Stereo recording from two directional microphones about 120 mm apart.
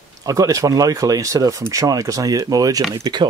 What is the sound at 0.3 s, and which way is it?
Speech, 25° right (ahead or behind).